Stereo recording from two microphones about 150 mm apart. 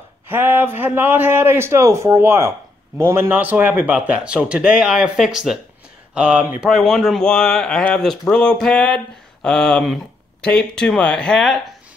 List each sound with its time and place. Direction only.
0.3 s speech: 15° right (ahead or behind); by 11.6 s 5° left (ahead or behind)